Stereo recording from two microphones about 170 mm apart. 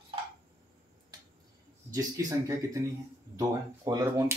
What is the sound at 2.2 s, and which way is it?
Speech, 20° right (ahead or behind).